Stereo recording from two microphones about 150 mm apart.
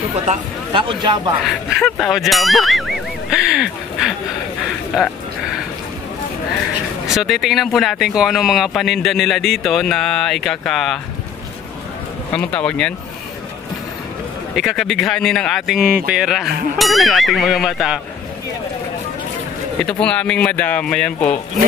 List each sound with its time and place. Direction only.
0.3 s speech: 35° right (ahead or behind)
1.4 s speech: centre (ahead or behind)
3.3 s a sound: 5° right (ahead or behind)
7.2 s speech: centre (ahead or behind)
12.5 s speech: 5° left (ahead or behind)
14.5 s speech: centre (ahead or behind)
19.8 s speech: 5° left (ahead or behind)